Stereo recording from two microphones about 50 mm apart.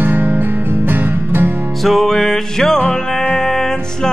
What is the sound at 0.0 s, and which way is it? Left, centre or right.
Music, right.